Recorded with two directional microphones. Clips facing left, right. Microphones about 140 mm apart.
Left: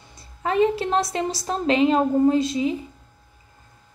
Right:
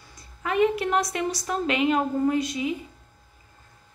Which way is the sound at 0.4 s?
30° left (ahead or behind).